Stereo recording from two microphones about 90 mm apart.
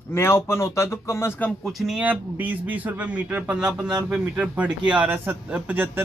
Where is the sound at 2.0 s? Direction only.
20° right (ahead or behind).